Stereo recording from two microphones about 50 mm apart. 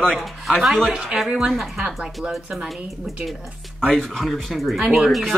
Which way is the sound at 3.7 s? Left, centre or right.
Centre.